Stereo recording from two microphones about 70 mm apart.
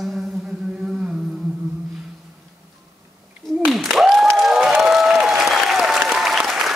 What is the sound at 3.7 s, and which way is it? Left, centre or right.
Applause, centre.